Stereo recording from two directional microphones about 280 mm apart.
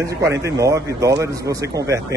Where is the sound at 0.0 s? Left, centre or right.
Centre.